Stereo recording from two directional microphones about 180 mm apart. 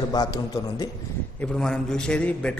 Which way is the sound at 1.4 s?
5° left (ahead or behind).